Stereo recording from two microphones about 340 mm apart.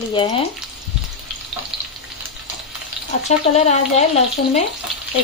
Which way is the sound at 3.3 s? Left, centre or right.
Centre.